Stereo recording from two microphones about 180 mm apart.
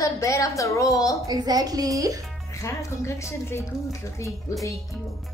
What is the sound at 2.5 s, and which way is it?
A woman's voice, 15° left (ahead or behind).